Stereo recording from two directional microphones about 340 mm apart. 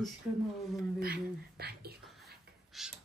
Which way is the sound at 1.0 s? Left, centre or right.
Right.